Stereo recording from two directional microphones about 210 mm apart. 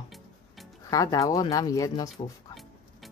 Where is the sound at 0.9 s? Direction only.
15° left (ahead or behind).